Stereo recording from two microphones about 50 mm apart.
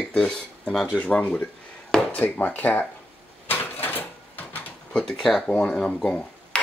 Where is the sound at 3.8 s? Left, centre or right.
Left.